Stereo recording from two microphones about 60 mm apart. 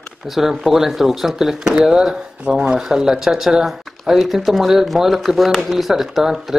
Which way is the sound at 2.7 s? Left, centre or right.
Centre.